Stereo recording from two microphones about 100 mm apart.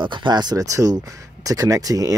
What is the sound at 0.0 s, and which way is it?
Speech, 55° right (ahead or behind).